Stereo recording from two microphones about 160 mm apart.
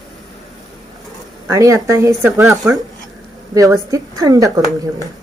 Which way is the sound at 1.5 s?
20° right (ahead or behind).